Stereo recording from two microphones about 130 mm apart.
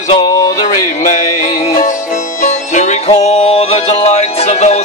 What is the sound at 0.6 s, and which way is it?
Music, 75° left (ahead or behind).